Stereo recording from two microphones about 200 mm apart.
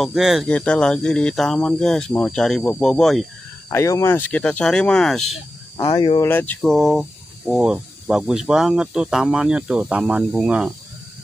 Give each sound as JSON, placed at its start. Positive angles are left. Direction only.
{"t": 0.0, "sound": "speech", "side_deg": 0}
{"t": 3.7, "sound": "speech", "side_deg": 15}
{"t": 5.8, "sound": "speech", "side_deg": 20}
{"t": 6.2, "sound": "speech", "side_deg": 10}